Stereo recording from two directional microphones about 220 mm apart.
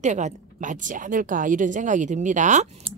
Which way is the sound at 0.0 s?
35° right (ahead or behind).